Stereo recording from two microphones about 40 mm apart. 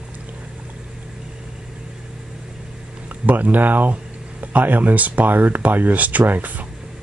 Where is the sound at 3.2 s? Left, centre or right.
Right.